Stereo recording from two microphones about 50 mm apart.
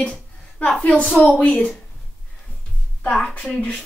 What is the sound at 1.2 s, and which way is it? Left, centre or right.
Speech, left.